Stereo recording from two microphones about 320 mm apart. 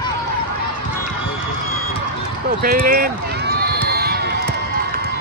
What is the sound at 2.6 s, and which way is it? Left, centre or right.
Run, right.